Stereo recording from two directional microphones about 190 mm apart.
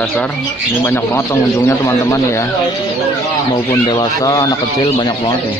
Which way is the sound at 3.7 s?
20° left (ahead or behind).